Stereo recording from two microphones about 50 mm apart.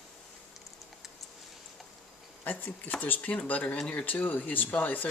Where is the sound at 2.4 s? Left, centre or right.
Left.